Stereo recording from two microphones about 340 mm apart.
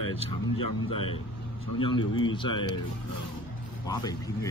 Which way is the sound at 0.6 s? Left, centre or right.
Left.